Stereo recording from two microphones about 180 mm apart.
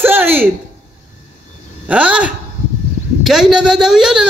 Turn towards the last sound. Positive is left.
turn(degrees=-5)  # may be behind; listen again after turning